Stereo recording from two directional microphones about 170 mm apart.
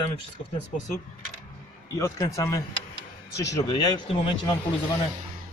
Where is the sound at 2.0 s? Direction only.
20° left (ahead or behind).